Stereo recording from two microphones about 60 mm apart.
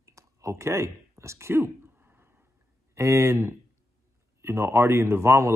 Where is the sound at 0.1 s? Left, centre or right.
Right.